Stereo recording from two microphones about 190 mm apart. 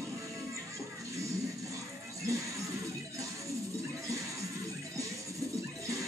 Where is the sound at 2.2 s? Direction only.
15° right (ahead or behind).